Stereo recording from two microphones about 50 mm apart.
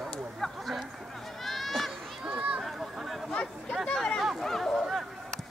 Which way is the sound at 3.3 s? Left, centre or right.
Centre.